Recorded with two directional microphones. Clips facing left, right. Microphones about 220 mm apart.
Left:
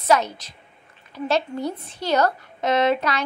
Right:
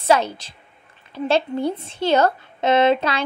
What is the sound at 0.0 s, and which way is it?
A woman's voice, 30° right (ahead or behind).